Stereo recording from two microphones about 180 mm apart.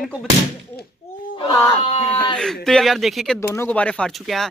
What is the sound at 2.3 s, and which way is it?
A man's voice, 5° left (ahead or behind).